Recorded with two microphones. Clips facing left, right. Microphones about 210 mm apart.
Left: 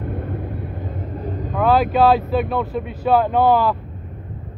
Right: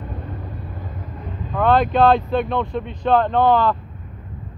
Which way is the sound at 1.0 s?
35° left (ahead or behind).